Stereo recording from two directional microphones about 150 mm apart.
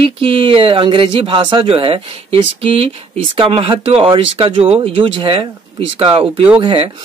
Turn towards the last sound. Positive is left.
turn(degrees=-35)  # may be behind; listen again after turning